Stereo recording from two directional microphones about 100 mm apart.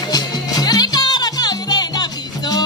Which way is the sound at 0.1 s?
40° left (ahead or behind).